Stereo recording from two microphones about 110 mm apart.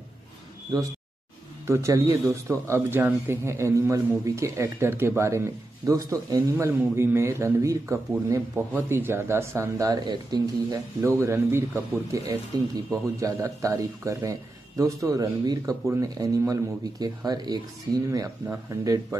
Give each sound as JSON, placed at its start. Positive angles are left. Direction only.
{"t": 0.7, "sound": "a man's voice", "side_deg": -35}